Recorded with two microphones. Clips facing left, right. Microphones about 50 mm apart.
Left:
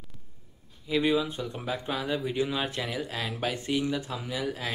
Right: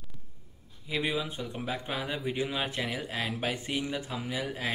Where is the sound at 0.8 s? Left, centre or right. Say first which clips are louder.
Left 6 dB; centre.